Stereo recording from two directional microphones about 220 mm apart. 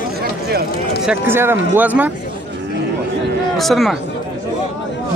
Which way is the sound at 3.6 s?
Centre (ahead or behind).